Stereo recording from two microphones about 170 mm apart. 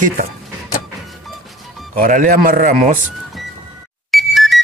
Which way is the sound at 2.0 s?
55° right (ahead or behind).